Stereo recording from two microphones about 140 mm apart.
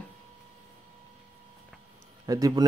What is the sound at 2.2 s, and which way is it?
Speech, 25° right (ahead or behind).